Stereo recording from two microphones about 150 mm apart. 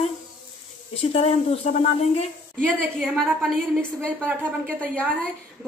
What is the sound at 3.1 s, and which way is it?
A woman's voice, 10° right (ahead or behind).